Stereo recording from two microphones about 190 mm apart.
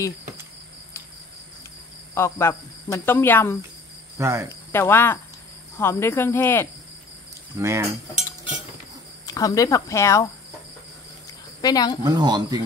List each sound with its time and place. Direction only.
2.1 s speech: 15° left (ahead or behind)
4.2 s cricket: 15° right (ahead or behind)
4.7 s speech: 10° left (ahead or behind)
7.5 s cricket: 15° right (ahead or behind)
9.2 s speech: 20° left (ahead or behind)
11.6 s speech: 20° left (ahead or behind)
12.0 s speech: 20° right (ahead or behind)